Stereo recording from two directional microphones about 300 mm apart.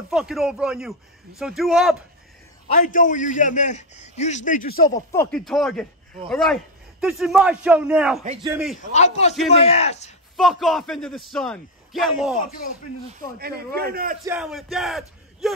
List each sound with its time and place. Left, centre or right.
0.1 s a man's voice: centre
2.7 s a man's voice: left
5.1 s a man's voice: centre
8.9 s a man's voice: left
10.3 s a man's voice: centre
13.4 s a man's voice: right
14.2 s a man's voice: centre